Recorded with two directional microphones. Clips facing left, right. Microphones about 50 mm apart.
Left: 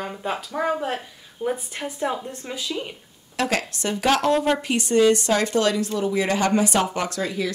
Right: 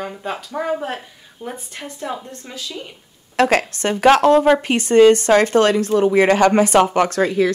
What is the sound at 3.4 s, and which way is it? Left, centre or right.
Speech, right.